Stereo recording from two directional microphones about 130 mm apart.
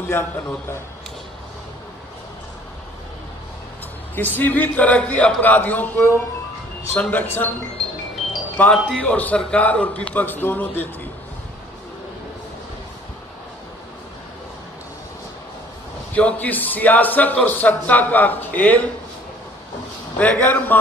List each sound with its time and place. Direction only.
4.1 s a man's voice: 15° left (ahead or behind)
8.7 s speech: centre (ahead or behind)
9.0 s a man's voice: 10° left (ahead or behind)
16.1 s a man's voice: 10° left (ahead or behind)
20.2 s a man's voice: 10° left (ahead or behind)